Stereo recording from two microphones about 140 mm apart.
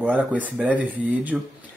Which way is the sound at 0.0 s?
10° right (ahead or behind).